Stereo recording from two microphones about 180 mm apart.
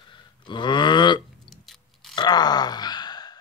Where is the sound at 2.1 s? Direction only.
25° left (ahead or behind).